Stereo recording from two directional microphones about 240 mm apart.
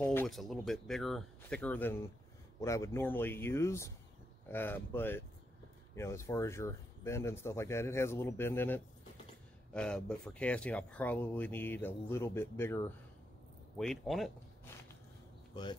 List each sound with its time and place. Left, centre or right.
0.0 s speech: centre